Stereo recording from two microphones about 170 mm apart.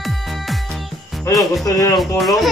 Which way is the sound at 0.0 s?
Centre (ahead or behind).